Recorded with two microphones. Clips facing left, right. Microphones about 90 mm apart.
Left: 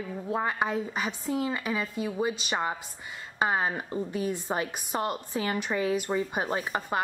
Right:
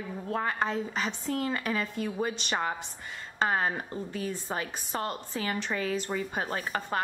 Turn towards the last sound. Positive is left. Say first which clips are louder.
# left 2 dB
turn(degrees=15)  # may be behind; listen again after turning